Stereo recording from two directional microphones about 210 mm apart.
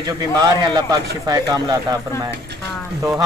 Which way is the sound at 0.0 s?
15° right (ahead or behind).